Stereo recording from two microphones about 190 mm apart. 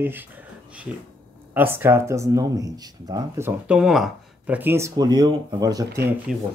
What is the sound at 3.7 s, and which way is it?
Speech, centre (ahead or behind).